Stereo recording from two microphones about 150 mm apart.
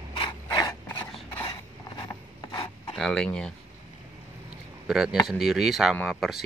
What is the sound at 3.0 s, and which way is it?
Speech, 5° left (ahead or behind).